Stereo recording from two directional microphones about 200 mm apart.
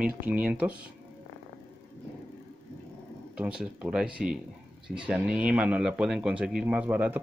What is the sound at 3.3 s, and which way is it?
A man's voice, 5° right (ahead or behind).